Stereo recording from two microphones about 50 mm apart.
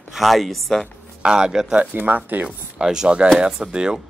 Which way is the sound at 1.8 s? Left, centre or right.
Right.